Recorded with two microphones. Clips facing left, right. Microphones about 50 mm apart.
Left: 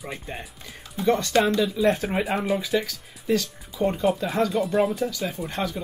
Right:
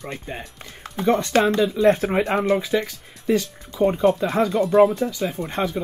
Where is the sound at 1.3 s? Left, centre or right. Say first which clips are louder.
Right 2 dB; right.